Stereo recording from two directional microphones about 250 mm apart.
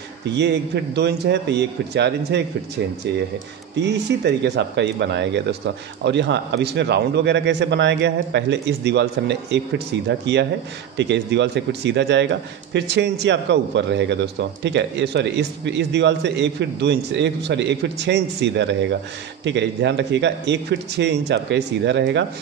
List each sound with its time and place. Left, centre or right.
0.4 s a man's voice: right
3.8 s a man's voice: right